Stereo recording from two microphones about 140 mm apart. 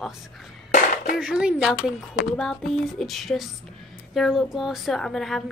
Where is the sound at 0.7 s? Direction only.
75° left (ahead or behind).